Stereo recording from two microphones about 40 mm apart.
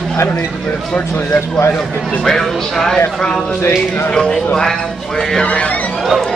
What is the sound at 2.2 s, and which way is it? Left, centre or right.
Speech, centre.